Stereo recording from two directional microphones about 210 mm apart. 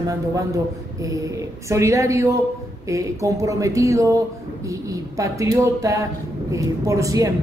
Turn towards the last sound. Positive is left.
turn(degrees=-15)  # may be behind; listen again after turning